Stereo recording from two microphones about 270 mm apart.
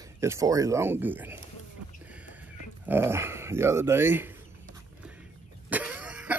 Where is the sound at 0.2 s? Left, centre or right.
Centre.